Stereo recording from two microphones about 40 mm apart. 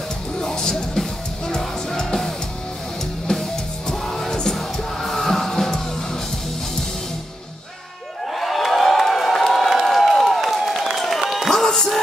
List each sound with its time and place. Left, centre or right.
0.4 s music: centre
3.3 s music: centre
8.3 s crowd: centre
11.0 s applause: centre
11.6 s music: centre